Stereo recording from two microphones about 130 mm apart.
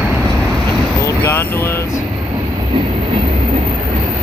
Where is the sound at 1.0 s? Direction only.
20° left (ahead or behind).